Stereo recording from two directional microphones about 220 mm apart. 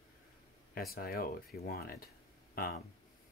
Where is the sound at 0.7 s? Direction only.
45° left (ahead or behind).